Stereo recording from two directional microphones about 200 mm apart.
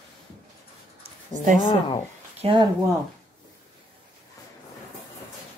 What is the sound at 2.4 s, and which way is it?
Speech, 25° right (ahead or behind).